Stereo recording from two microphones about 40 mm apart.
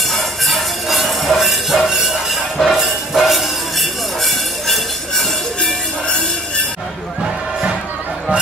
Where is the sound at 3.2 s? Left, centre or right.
Centre.